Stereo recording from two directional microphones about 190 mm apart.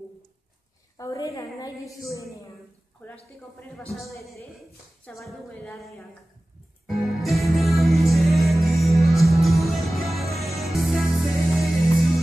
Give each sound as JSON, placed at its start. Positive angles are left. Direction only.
{"t": 0.9, "sound": "a woman's voice", "side_deg": 15}
{"t": 5.2, "sound": "a woman's voice", "side_deg": 0}
{"t": 6.9, "sound": "music", "side_deg": 0}